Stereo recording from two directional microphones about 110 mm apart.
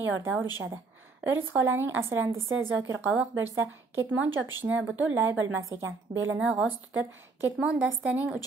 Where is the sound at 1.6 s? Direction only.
20° right (ahead or behind).